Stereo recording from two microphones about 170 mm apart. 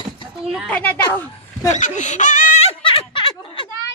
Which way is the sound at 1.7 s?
45° left (ahead or behind).